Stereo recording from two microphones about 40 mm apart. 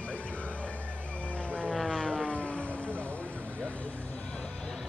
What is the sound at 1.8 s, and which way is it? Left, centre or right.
Vehicle, centre.